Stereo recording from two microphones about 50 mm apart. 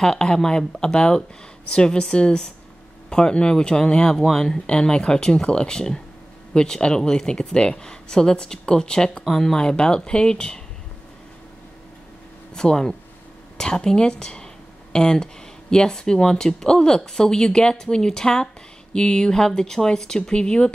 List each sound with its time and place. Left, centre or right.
0.0 s speech: centre
12.5 s speech: centre